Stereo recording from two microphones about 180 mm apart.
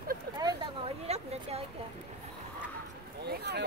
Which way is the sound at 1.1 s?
35° right (ahead or behind).